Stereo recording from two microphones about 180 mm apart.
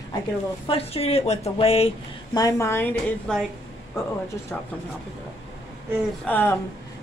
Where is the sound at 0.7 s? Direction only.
35° left (ahead or behind).